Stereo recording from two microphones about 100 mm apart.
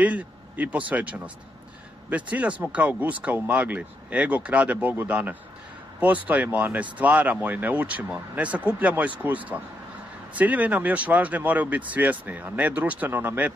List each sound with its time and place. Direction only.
0.0 s speech: 15° right (ahead or behind)